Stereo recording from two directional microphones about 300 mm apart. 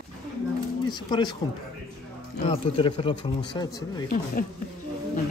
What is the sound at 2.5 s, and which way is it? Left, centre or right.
Speech, centre.